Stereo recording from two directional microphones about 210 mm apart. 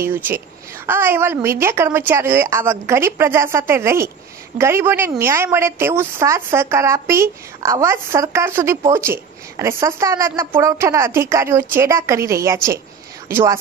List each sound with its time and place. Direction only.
0.0 s a woman's voice: 10° right (ahead or behind)